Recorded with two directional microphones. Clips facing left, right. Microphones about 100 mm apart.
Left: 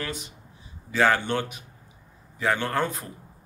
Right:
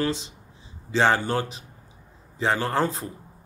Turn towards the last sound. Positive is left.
turn(degrees=-25)  # may be behind; listen again after turning